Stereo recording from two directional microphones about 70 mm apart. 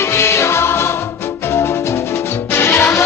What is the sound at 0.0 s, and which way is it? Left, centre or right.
Music, left.